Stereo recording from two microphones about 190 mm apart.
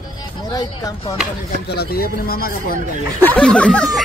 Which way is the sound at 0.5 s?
20° left (ahead or behind).